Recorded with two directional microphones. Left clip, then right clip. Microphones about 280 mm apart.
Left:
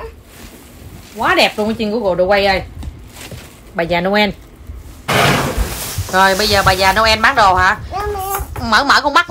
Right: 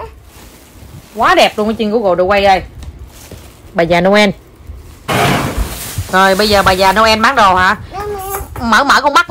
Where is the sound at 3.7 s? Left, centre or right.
Right.